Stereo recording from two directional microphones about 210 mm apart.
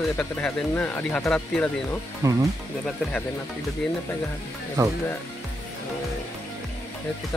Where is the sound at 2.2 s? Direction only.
15° right (ahead or behind).